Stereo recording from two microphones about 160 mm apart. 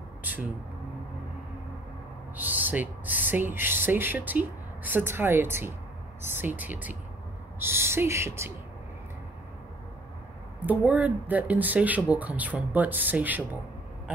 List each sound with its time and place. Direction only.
2.3 s speech: 10° right (ahead or behind)
10.6 s speech: 10° right (ahead or behind)